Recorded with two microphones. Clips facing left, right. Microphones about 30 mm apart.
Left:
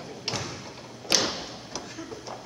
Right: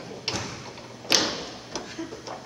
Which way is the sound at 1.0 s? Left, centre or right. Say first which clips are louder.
Right 2 dB; centre.